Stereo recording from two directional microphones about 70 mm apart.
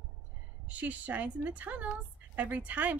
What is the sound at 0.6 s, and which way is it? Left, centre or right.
A woman's voice, right.